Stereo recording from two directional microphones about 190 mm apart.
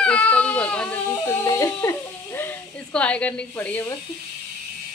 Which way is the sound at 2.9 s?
5° left (ahead or behind).